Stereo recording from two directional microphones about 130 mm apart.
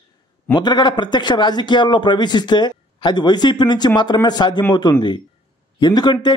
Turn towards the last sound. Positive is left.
turn(degrees=35)  # may be behind; listen again after turning